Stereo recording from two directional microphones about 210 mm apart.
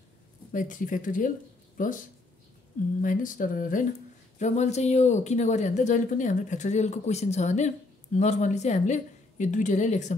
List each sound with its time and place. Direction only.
0.5 s speech: 40° left (ahead or behind)
3.0 s speech: 40° left (ahead or behind)